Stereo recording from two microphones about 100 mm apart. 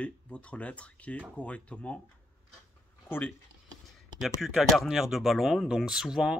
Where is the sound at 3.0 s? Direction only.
20° left (ahead or behind).